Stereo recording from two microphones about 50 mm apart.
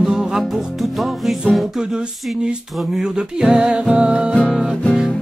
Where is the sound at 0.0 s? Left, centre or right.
Centre.